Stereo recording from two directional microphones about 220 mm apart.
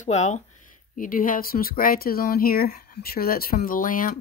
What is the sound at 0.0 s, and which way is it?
Speech, 30° left (ahead or behind).